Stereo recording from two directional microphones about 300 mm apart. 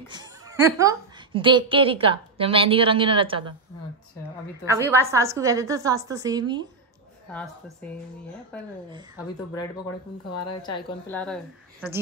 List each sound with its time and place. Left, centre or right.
0.1 s a woman's voice: centre
4.6 s a woman's voice: centre
7.2 s a woman's voice: centre
10.5 s a woman's voice: centre